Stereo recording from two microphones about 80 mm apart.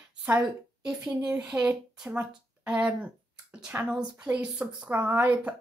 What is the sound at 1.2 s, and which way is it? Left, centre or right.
Speech, centre.